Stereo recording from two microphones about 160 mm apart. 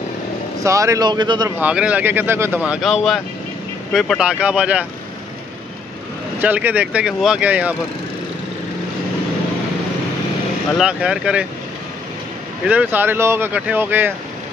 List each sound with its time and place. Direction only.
0.7 s speech: 20° right (ahead or behind)
1.6 s speech: 5° right (ahead or behind)
2.6 s speech: centre (ahead or behind)
6.4 s speech: 10° right (ahead or behind)
10.8 s speech: 5° right (ahead or behind)
12.6 s speech: 10° right (ahead or behind)